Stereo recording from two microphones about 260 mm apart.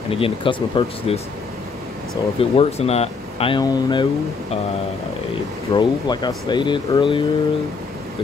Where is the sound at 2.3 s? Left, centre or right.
Left.